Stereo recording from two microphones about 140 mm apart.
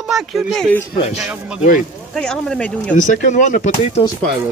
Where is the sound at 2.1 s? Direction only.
5° left (ahead or behind).